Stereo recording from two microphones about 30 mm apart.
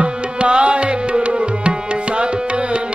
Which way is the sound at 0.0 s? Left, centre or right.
Right.